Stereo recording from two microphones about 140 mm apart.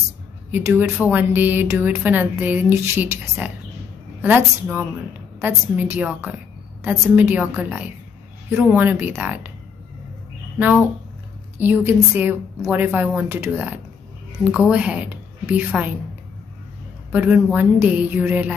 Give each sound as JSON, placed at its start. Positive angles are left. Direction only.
{"t": 0.5, "sound": "a woman's voice", "side_deg": -15}
{"t": 11.6, "sound": "a woman's voice", "side_deg": -15}
{"t": 17.1, "sound": "speech", "side_deg": -10}